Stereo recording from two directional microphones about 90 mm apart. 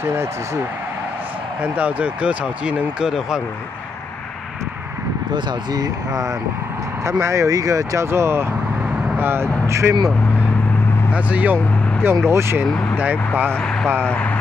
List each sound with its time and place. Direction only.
0.0 s speech: 30° right (ahead or behind)
1.6 s speech: 15° right (ahead or behind)
5.3 s speech: 50° right (ahead or behind)
7.1 s speech: 35° right (ahead or behind)
11.1 s speech: 15° right (ahead or behind)
11.5 s vehicle: 30° right (ahead or behind)
12.3 s speech: 30° right (ahead or behind)
12.9 s speech: 20° right (ahead or behind)
13.6 s speech: 10° left (ahead or behind)